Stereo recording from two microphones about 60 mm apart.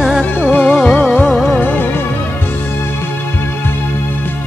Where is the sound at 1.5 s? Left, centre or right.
Left.